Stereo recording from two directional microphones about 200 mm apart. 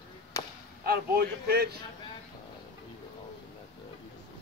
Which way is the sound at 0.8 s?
50° right (ahead or behind).